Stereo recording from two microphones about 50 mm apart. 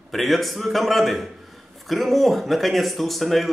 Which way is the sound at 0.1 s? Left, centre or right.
Centre.